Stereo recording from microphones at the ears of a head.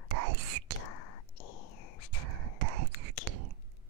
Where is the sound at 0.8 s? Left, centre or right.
Left.